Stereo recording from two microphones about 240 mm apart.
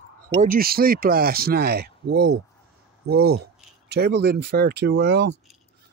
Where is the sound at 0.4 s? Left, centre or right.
Right.